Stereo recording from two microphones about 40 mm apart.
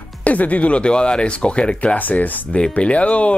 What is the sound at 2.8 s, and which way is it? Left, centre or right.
Speech, left.